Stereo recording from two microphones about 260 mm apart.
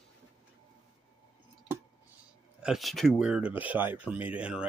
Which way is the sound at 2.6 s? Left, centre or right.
Centre.